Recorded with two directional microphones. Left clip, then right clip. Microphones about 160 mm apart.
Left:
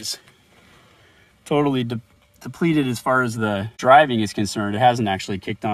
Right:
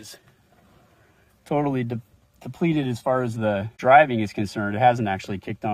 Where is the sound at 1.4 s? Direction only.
15° left (ahead or behind).